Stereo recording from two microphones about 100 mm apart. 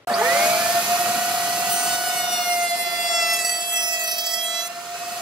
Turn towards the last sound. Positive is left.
turn(degrees=-5)  # may be behind; listen again after turning